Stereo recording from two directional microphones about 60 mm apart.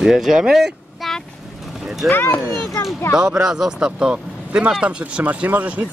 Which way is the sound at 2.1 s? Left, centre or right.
Left.